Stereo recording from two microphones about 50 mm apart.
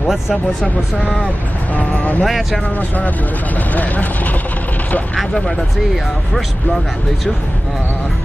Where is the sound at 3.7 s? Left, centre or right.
Left.